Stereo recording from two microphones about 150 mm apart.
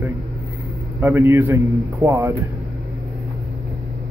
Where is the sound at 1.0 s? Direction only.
15° right (ahead or behind).